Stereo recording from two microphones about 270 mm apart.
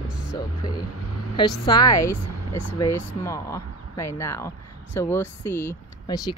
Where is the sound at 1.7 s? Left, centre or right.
Centre.